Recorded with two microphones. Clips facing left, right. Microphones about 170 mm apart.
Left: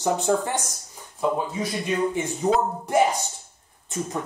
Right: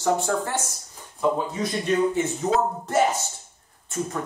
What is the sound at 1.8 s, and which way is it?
Speech, 10° left (ahead or behind).